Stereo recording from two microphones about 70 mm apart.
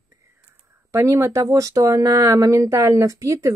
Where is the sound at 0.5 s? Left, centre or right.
Right.